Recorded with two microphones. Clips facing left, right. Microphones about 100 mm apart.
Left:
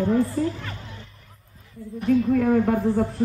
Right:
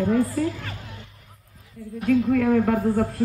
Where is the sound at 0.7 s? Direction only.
30° left (ahead or behind).